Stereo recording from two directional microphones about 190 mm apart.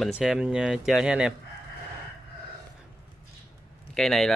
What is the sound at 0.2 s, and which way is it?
Speech, 5° right (ahead or behind).